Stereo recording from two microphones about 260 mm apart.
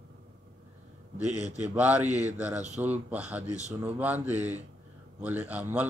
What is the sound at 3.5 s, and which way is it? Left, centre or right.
Speech, right.